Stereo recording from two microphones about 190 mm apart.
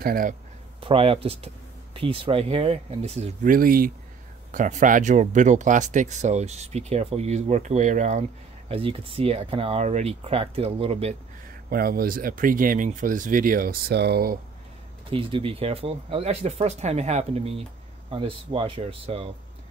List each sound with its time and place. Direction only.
0.0 s speech: 45° right (ahead or behind)
0.7 s speech: 30° right (ahead or behind)
3.5 s speech: 50° right (ahead or behind); by 11.1 s 30° right (ahead or behind)
11.7 s speech: 50° right (ahead or behind)
15.0 s speech: 25° right (ahead or behind)